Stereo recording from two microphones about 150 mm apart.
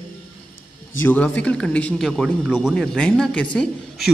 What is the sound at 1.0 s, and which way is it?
A man's voice, 10° left (ahead or behind).